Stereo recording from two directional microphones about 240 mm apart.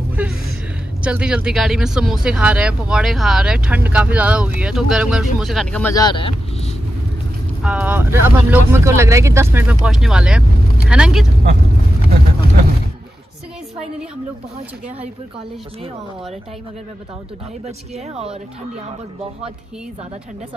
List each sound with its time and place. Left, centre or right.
0.1 s a sound: centre
1.0 s speech: centre; by 6.7 s left
7.6 s speech: centre
17.6 s speech: right